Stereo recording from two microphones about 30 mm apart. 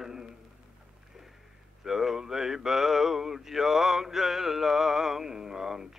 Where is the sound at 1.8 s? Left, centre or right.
Centre.